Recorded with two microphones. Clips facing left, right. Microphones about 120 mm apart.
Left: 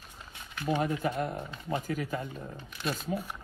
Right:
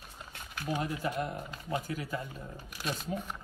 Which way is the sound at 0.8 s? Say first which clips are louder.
Left 5 dB; 45° left (ahead or behind).